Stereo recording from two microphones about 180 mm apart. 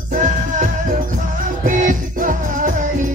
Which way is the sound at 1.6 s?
45° right (ahead or behind).